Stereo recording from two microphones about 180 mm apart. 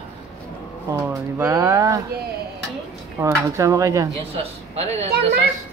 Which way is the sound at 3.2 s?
10° right (ahead or behind).